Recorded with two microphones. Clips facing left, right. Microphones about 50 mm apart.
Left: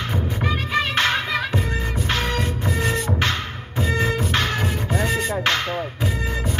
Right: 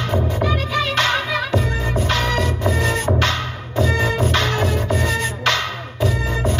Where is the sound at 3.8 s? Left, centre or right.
Left.